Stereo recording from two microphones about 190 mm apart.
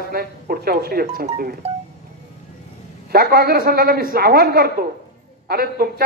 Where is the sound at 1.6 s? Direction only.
30° right (ahead or behind).